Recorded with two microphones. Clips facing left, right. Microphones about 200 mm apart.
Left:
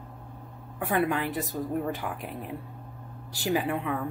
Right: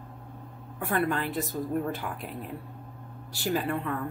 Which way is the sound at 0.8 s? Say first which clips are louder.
Left 1 dB; 15° left (ahead or behind).